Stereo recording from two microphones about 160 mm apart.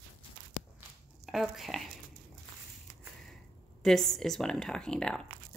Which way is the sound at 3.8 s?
Centre (ahead or behind).